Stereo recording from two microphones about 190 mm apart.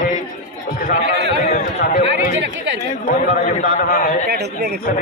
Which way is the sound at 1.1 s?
65° right (ahead or behind).